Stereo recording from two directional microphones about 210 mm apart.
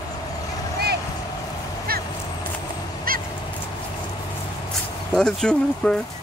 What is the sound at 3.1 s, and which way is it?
Goose, 45° right (ahead or behind).